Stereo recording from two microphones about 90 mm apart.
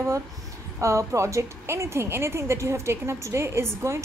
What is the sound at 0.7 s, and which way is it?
Speech, 35° right (ahead or behind).